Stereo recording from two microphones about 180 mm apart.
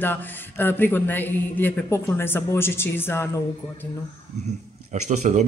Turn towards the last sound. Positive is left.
turn(degrees=-40)  # may be behind; listen again after turning